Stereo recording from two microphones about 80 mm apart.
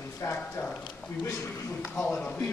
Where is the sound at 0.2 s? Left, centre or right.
Left.